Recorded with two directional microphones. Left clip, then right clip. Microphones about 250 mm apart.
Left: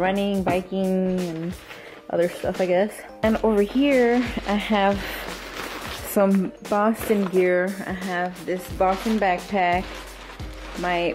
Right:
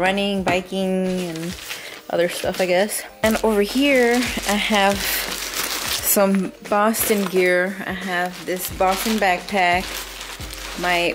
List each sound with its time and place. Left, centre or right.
0.0 s speech: centre
2.1 s speech: centre